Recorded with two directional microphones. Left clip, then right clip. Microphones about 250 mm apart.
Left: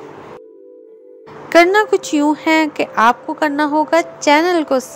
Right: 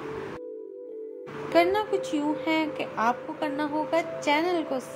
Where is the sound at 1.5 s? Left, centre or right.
Left.